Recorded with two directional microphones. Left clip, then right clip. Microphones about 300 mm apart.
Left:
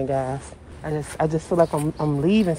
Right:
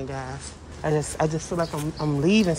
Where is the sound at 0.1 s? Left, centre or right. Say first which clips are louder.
Left 10 dB; centre.